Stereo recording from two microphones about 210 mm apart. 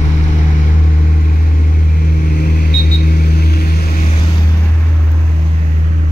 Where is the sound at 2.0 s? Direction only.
45° left (ahead or behind).